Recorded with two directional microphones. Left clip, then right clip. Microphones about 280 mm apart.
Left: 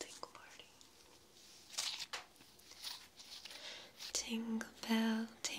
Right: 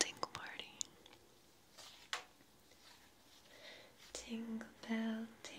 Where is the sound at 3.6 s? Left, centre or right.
Centre.